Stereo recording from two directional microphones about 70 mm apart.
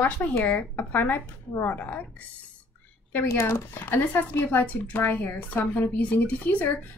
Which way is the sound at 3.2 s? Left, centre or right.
Left.